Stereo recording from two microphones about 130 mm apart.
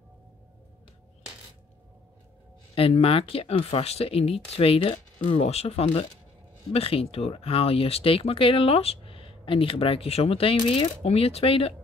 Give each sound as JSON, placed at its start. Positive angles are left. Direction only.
{"t": 2.7, "sound": "speech", "side_deg": 50}